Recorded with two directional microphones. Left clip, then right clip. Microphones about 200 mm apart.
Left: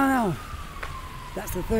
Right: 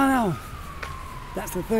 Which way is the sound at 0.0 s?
5° right (ahead or behind).